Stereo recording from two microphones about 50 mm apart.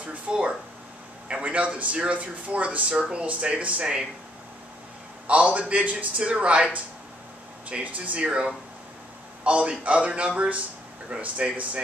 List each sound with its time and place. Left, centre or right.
0.0 s speech: right
5.2 s speech: right